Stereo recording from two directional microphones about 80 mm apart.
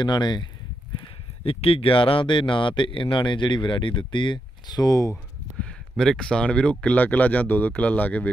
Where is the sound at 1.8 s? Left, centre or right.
Left.